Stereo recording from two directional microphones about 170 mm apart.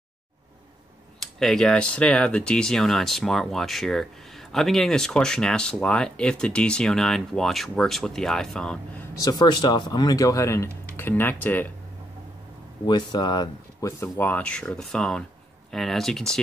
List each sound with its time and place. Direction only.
1.2 s speech: centre (ahead or behind)
9.1 s speech: 20° left (ahead or behind)
12.8 s speech: 25° left (ahead or behind); by 16.3 s 5° left (ahead or behind)